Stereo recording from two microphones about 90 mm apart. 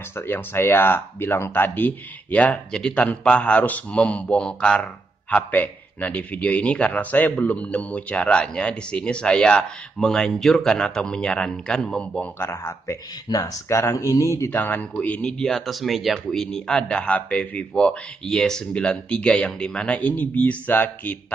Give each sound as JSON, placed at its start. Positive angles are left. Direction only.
{"t": 0.1, "sound": "speech", "side_deg": 25}
{"t": 12.4, "sound": "speech", "side_deg": 30}
{"t": 14.6, "sound": "speech", "side_deg": 20}